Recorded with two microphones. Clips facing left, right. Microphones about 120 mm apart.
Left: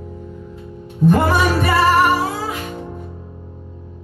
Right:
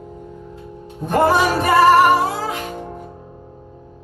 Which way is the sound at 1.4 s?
15° right (ahead or behind).